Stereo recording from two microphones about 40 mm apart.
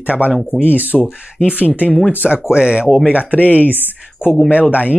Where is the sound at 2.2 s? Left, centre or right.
Centre.